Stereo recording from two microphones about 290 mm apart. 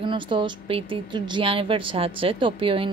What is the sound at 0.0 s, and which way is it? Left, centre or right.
A woman's voice, centre.